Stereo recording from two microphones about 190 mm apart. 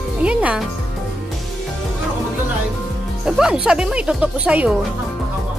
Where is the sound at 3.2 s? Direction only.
5° right (ahead or behind).